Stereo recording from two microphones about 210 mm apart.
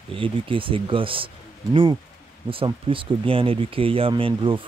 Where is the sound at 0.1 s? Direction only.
25° right (ahead or behind).